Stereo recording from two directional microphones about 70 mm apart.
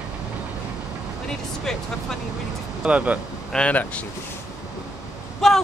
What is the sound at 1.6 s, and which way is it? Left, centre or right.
Speech, centre.